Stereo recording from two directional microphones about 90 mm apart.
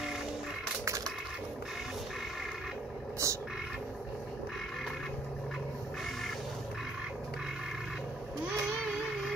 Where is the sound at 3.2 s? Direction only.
30° right (ahead or behind).